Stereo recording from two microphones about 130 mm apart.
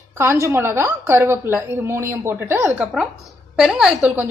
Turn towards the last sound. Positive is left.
turn(degrees=-10)  # may be behind; listen again after turning